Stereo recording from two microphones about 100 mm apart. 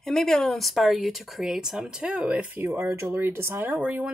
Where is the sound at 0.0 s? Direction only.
5° left (ahead or behind); by 3.7 s 25° right (ahead or behind).